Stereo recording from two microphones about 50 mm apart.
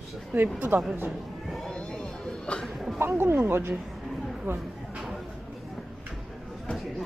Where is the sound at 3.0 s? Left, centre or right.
Right.